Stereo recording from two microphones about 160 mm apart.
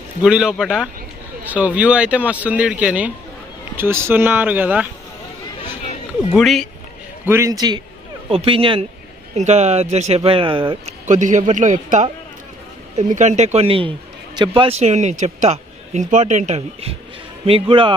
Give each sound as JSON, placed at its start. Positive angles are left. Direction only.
{"t": 0.2, "sound": "speech", "side_deg": -5}
{"t": 6.3, "sound": "speech", "side_deg": 0}
{"t": 7.2, "sound": "a man's voice", "side_deg": -20}
{"t": 9.3, "sound": "a man's voice", "side_deg": -45}
{"t": 11.1, "sound": "a man's voice", "side_deg": -50}